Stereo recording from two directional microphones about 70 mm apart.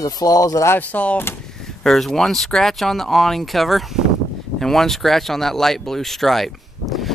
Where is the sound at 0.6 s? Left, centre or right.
Left.